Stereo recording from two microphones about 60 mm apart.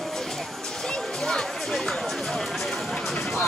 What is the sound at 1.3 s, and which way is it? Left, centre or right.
Music, centre.